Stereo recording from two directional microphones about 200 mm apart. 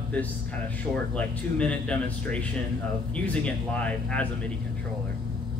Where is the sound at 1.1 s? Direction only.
5° left (ahead or behind).